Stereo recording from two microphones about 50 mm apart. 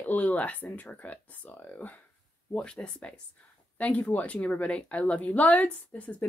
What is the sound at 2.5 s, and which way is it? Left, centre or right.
Speech, centre.